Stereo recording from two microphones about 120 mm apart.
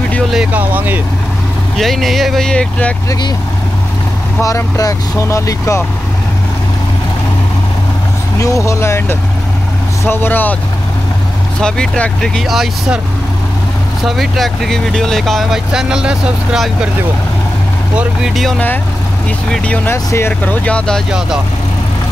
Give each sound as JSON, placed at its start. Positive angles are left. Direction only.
{"t": 0.3, "sound": "speech", "side_deg": -10}
{"t": 1.8, "sound": "speech", "side_deg": 0}
{"t": 4.4, "sound": "speech", "side_deg": 25}
{"t": 8.4, "sound": "speech", "side_deg": 25}
{"t": 10.0, "sound": "speech", "side_deg": 15}
{"t": 11.6, "sound": "speech", "side_deg": 5}
{"t": 14.0, "sound": "speech", "side_deg": 0}
{"t": 17.9, "sound": "speech", "side_deg": 0}
{"t": 19.5, "sound": "speech", "side_deg": 10}